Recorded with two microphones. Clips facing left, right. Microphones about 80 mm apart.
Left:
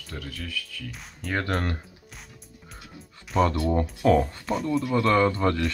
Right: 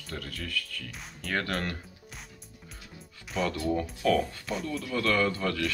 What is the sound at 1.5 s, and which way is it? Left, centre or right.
Speech, left.